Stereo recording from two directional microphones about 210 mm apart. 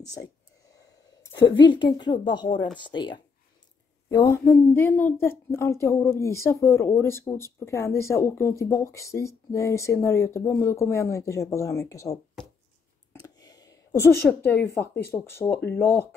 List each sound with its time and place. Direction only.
0.0 s speech: 15° left (ahead or behind)
1.3 s a woman's voice: 60° left (ahead or behind)
2.0 s a woman's voice: 20° left (ahead or behind)
13.4 s a sound: 20° left (ahead or behind)
15.0 s a woman's voice: 10° left (ahead or behind)